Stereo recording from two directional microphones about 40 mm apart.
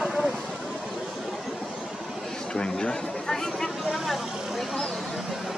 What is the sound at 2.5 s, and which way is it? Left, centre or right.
Speech, left.